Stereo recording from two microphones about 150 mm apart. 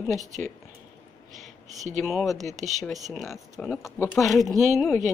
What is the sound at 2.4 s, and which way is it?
Speech, 50° right (ahead or behind).